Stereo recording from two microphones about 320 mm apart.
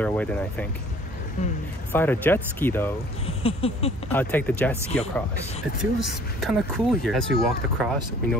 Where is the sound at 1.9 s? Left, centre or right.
Centre.